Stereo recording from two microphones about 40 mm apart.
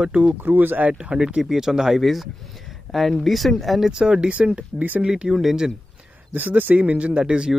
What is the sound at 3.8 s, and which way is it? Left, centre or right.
Speech, centre.